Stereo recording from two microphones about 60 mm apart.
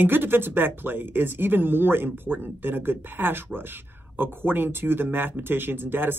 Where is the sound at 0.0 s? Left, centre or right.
Right.